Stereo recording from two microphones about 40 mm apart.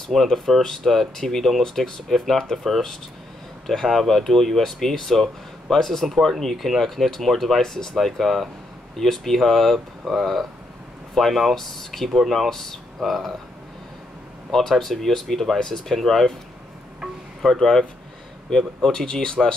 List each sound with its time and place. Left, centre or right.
0.1 s speech: centre
6.5 s speech: centre
6.8 s speech: centre
12.1 s speech: centre
12.4 s speech: centre
13.0 s speech: centre
14.5 s speech: centre
17.5 s speech: centre